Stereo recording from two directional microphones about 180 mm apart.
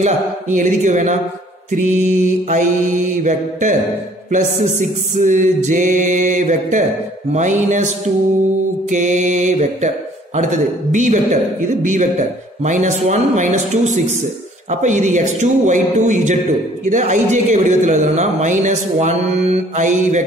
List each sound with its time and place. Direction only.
0.0 s a man's voice: 45° right (ahead or behind)
3.2 s music: 45° right (ahead or behind)
7.3 s a man's voice: 40° right (ahead or behind)
8.9 s music: 45° right (ahead or behind)
14.7 s a man's voice: 40° right (ahead or behind)